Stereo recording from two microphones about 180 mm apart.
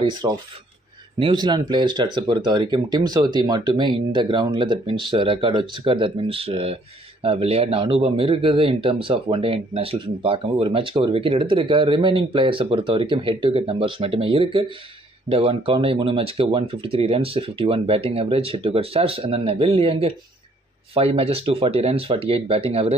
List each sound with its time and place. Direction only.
0.0 s speech: 25° right (ahead or behind)